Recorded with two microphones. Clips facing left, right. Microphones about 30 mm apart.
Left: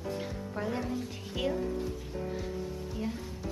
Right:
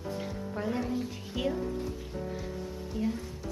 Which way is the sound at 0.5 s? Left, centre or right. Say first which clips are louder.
Right 2 dB; centre.